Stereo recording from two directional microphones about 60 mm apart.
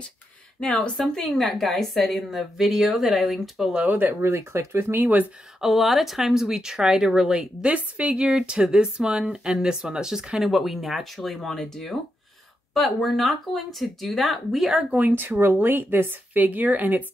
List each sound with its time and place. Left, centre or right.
0.6 s speech: centre
0.9 s a woman's voice: centre
3.7 s speech: right
4.2 s speech: right
5.6 s a woman's voice: centre
14.9 s a woman's voice: right